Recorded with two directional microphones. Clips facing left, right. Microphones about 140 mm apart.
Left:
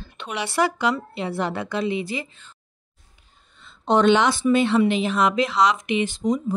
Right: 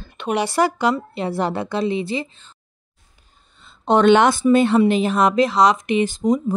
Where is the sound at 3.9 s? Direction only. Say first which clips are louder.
Right 4 dB; 55° right (ahead or behind); by 6.4 s 35° right (ahead or behind).